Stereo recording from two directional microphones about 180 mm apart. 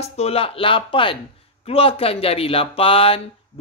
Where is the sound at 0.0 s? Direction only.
35° left (ahead or behind).